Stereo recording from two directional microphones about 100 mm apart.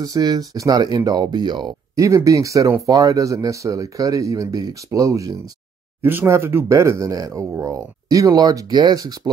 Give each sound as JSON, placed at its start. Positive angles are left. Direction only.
{"t": 0.0, "sound": "speech", "side_deg": -40}
{"t": 2.0, "sound": "speech", "side_deg": -30}